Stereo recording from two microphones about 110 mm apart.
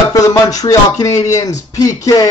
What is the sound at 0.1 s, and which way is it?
Speech, 30° left (ahead or behind).